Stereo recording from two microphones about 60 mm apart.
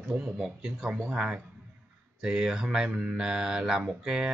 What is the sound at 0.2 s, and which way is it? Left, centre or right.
Speech, centre.